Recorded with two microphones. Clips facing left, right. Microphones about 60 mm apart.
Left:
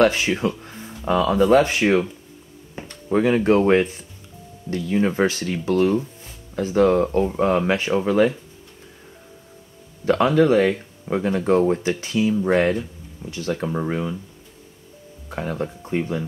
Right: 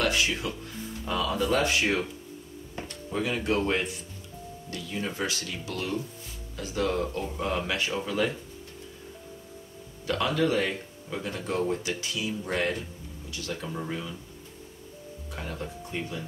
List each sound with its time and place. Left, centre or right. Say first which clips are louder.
0.0 s speech: left 9 dB; left
3.1 s speech: left 11 dB; left
10.0 s speech: left 10 dB; left
15.2 s speech: left 10 dB; left